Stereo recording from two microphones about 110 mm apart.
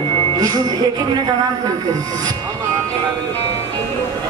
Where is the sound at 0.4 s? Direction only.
35° right (ahead or behind).